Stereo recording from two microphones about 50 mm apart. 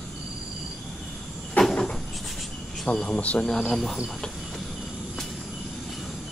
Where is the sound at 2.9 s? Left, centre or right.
Left.